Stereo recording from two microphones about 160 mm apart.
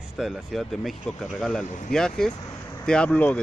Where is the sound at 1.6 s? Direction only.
50° left (ahead or behind).